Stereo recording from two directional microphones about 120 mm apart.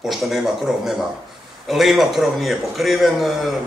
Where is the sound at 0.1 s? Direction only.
Centre (ahead or behind).